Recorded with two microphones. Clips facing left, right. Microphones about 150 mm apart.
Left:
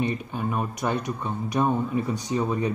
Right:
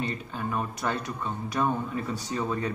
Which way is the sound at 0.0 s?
15° left (ahead or behind).